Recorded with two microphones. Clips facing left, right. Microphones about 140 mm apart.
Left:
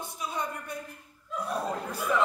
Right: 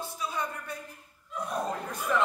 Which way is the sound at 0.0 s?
20° left (ahead or behind).